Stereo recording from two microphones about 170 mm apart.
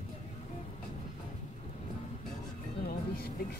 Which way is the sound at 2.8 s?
60° left (ahead or behind).